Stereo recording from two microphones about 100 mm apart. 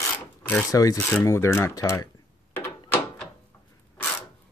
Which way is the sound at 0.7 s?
35° left (ahead or behind).